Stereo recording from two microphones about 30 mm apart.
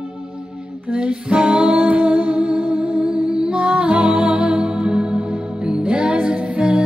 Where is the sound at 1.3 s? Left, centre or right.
Right.